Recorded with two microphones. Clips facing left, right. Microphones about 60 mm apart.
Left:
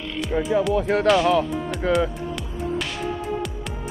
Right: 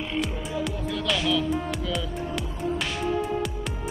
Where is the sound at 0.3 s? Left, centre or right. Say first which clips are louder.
Left 9 dB; left.